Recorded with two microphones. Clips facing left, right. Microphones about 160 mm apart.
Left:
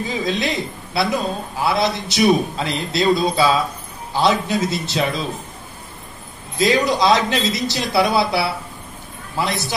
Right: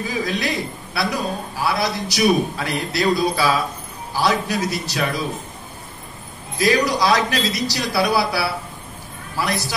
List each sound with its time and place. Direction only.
0.0 s a man's voice: 25° left (ahead or behind)
6.6 s a man's voice: 20° left (ahead or behind)